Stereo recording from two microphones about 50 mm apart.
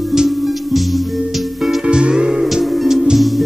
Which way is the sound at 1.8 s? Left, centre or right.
Centre.